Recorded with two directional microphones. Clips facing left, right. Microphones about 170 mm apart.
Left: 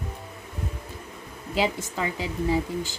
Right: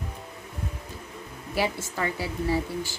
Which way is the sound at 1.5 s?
15° left (ahead or behind).